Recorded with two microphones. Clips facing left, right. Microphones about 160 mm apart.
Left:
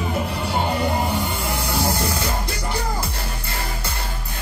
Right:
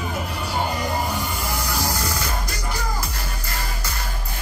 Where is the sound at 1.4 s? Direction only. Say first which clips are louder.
Left 3 dB; 30° left (ahead or behind).